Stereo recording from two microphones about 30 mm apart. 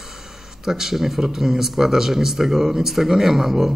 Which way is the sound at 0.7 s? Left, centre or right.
Centre.